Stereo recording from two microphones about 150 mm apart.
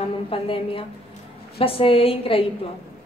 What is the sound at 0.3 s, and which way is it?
A woman's voice, 35° left (ahead or behind).